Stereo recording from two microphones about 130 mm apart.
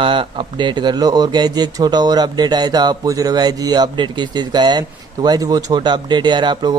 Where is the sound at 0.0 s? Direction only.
40° right (ahead or behind).